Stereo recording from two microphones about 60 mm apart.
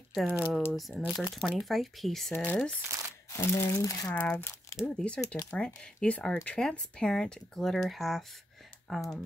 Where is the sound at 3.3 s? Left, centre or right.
Left.